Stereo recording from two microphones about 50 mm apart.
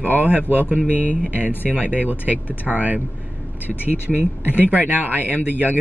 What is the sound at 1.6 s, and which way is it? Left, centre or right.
Speech, left.